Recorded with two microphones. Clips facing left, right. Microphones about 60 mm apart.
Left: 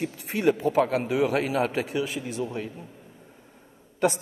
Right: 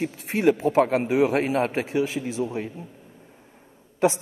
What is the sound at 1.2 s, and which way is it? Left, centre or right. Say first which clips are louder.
A man's voice: right 3 dB; right.